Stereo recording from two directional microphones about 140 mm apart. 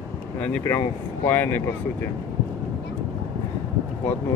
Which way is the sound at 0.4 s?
10° left (ahead or behind).